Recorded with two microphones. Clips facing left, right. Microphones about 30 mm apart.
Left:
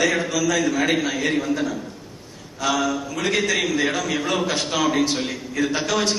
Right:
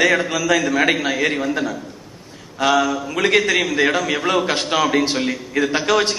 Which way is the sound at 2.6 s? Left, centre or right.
Right.